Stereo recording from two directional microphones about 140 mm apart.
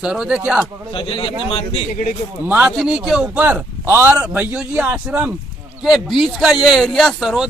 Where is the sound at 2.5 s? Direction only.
5° right (ahead or behind).